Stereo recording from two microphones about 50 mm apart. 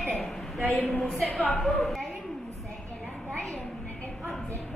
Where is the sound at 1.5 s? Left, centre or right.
Centre.